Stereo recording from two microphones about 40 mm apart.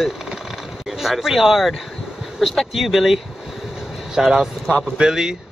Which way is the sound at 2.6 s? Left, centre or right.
Centre.